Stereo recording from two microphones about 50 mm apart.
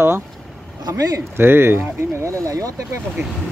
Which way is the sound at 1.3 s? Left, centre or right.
Right.